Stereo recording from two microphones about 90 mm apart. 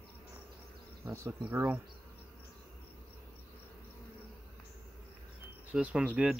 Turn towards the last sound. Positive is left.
turn(degrees=-10)  # may be behind; listen again after turning